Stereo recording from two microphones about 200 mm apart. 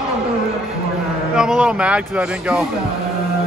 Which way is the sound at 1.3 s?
5° right (ahead or behind).